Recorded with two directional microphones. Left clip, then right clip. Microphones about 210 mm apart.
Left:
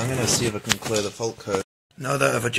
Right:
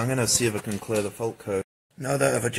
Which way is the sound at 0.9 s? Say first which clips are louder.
Left 2 dB; centre (ahead or behind).